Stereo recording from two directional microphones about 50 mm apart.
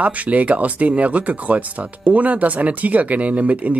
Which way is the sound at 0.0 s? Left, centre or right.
Right.